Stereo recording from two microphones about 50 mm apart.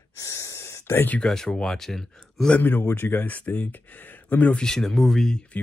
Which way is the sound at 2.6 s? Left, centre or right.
Left.